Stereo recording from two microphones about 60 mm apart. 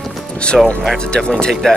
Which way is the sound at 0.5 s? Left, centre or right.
Centre.